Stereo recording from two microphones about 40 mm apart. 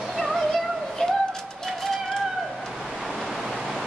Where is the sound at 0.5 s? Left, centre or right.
Centre.